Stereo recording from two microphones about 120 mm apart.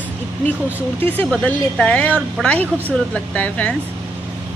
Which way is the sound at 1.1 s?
10° left (ahead or behind).